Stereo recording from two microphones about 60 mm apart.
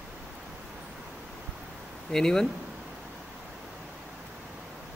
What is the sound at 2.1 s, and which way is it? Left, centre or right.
Speech, centre.